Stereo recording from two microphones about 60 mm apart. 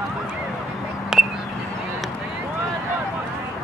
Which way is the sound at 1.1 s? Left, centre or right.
Centre.